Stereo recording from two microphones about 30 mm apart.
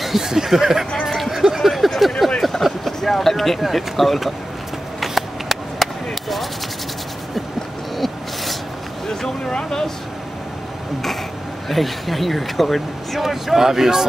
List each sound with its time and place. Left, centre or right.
0.0 s speech: centre
1.3 s a sound: centre
2.0 s speech: centre
2.6 s vehicle: centre
3.0 s speech: centre
3.9 s speech: centre
5.0 s a sound: centre
9.0 s vehicle: centre
9.5 s speech: left
11.7 s speech: centre
13.2 s speech: centre